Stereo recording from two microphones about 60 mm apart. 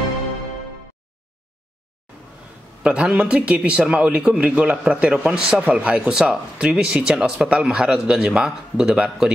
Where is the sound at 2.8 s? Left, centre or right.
Centre.